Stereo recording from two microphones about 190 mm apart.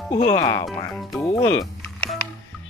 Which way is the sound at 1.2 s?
15° left (ahead or behind).